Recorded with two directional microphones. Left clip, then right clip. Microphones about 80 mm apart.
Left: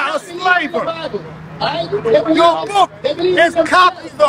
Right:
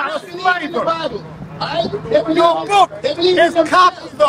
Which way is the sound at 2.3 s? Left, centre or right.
Centre.